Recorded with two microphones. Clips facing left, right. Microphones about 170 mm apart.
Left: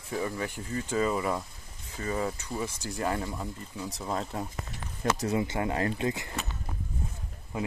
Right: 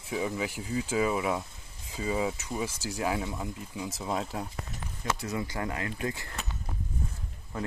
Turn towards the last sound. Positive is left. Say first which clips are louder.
# left 2 dB
turn(degrees=15)  # may be behind; listen again after turning